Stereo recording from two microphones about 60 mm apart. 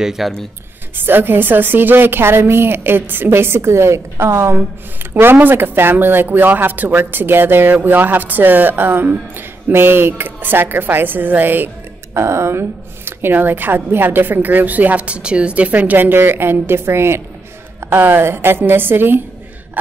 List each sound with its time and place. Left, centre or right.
0.0 s speech: centre
0.9 s a woman's voice: right
5.2 s a woman's voice: right
12.1 s a woman's voice: right